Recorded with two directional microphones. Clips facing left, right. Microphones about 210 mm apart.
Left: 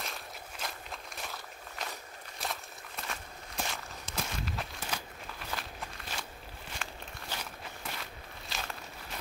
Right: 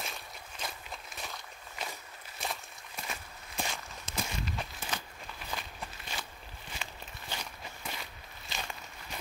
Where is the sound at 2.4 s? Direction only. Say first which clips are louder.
Even; 5° right (ahead or behind).